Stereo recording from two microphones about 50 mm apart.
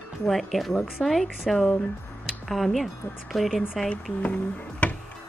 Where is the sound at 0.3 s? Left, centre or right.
Centre.